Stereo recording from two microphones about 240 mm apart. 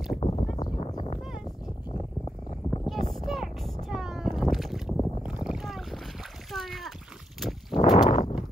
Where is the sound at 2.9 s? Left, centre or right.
Centre.